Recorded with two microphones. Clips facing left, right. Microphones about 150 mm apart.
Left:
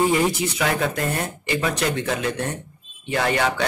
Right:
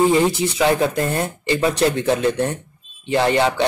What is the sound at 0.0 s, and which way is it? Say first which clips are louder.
Speech: right 4 dB; 30° right (ahead or behind).